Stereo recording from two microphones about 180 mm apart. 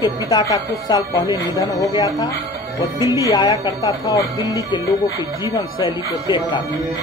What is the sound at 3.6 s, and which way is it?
Speech, 20° left (ahead or behind).